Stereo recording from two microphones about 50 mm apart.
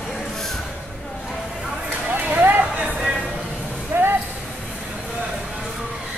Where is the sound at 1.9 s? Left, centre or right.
Right.